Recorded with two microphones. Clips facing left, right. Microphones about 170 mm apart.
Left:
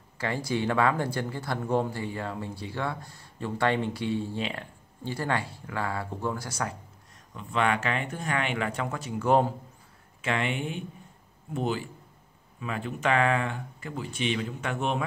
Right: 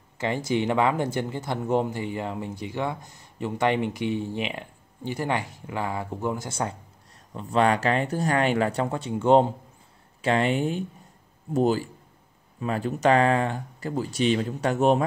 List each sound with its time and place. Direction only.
0.2 s speech: 20° right (ahead or behind)
7.3 s speech: 35° right (ahead or behind)